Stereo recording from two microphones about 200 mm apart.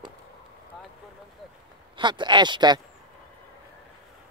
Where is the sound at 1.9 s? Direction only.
25° right (ahead or behind).